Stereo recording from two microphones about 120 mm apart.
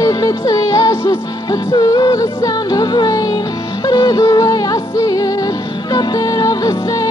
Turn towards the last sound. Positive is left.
turn(degrees=30)  # may be behind; listen again after turning